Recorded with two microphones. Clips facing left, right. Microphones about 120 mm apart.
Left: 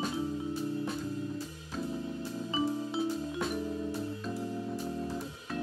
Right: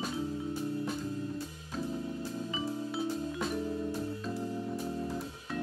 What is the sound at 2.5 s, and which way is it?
Music, 25° left (ahead or behind).